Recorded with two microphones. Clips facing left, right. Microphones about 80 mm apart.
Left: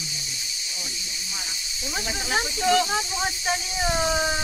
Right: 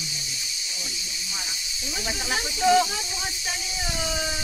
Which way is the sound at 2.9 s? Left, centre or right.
Left.